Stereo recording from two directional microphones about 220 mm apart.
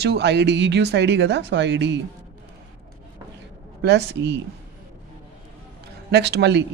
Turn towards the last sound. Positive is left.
turn(degrees=-50)  # may be behind; listen again after turning